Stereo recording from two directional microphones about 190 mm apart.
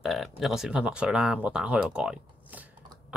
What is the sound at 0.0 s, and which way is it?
Speech, centre (ahead or behind).